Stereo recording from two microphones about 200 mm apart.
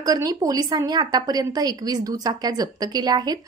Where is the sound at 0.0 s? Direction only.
20° right (ahead or behind).